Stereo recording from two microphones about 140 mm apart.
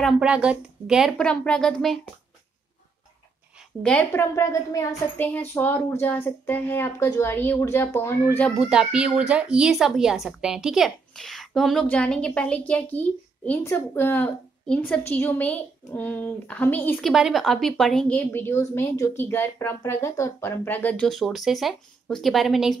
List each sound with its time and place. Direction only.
0.0 s a woman's voice: 5° right (ahead or behind)
4.1 s speech: 20° left (ahead or behind)
8.5 s speech: 5° right (ahead or behind); by 17.0 s 15° left (ahead or behind)
17.0 s a woman's voice: centre (ahead or behind)
18.1 s speech: 15° left (ahead or behind); by 22.8 s centre (ahead or behind)